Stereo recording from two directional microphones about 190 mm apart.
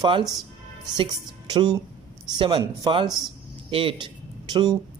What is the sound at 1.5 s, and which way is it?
Speech, 20° right (ahead or behind).